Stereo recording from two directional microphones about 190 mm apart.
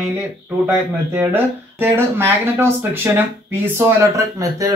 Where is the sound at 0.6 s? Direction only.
10° right (ahead or behind).